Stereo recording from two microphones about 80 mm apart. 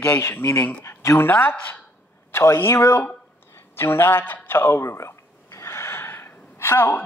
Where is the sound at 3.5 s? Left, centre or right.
Left.